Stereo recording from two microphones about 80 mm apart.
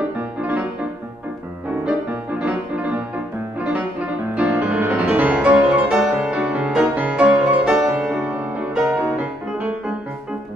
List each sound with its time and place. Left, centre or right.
0.4 s music: centre
1.9 s music: centre